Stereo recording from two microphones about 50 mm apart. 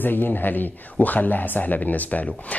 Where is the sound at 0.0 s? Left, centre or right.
Left.